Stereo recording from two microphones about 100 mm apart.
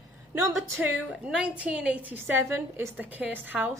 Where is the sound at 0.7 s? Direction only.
15° right (ahead or behind).